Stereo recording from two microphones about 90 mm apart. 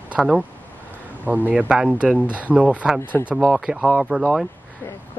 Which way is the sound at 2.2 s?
20° left (ahead or behind).